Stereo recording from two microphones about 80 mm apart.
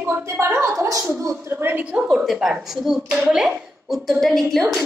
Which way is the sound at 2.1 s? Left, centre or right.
Centre.